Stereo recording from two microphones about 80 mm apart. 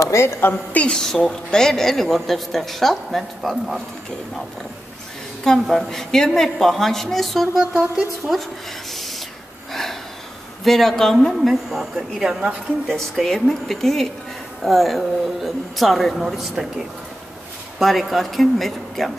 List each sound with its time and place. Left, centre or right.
0.0 s a woman's voice: left
0.8 s a man's voice: centre
5.4 s a man's voice: centre
9.7 s gasp: centre
10.6 s a man's voice: centre